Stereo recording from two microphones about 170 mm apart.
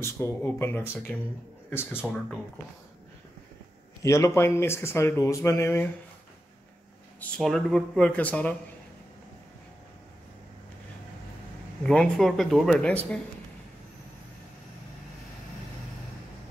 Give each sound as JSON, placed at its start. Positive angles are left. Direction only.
{"t": 0.0, "sound": "speech", "side_deg": 15}
{"t": 4.0, "sound": "speech", "side_deg": 20}
{"t": 7.2, "sound": "speech", "side_deg": 5}
{"t": 11.8, "sound": "speech", "side_deg": 5}